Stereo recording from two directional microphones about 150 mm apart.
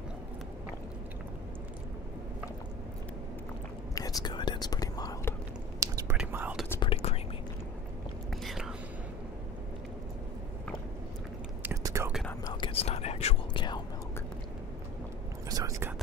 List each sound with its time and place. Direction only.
3.9 s whispering: 25° left (ahead or behind)
5.8 s whispering: 20° right (ahead or behind)
6.1 s whispering: 10° right (ahead or behind)
6.8 s whispering: 40° left (ahead or behind)
8.5 s whispering: 5° right (ahead or behind)
11.6 s whispering: 20° right (ahead or behind)
12.5 s whispering: 35° left (ahead or behind)
15.5 s whispering: 20° right (ahead or behind)